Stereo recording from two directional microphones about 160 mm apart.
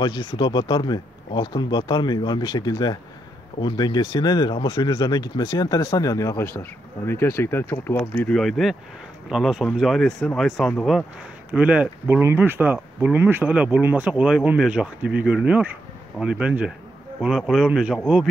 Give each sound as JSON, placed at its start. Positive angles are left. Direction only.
{"t": 0.0, "sound": "speech", "side_deg": 30}
{"t": 11.5, "sound": "speech", "side_deg": -10}